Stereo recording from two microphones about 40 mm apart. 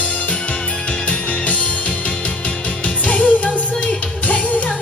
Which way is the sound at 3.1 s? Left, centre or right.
Left.